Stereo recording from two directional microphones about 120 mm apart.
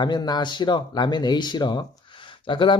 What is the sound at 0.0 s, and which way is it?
Speech, 35° left (ahead or behind).